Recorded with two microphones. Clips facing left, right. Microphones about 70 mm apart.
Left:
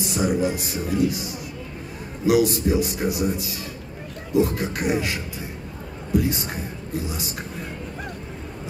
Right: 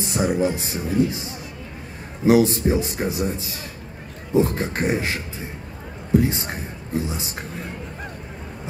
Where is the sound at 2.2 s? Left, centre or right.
Right.